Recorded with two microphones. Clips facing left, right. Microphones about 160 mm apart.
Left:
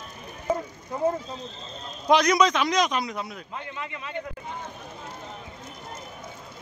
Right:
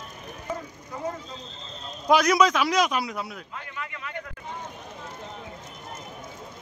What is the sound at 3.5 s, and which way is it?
Speech, 25° left (ahead or behind).